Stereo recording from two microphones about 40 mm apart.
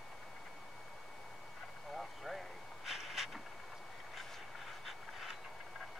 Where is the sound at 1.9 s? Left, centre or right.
Centre.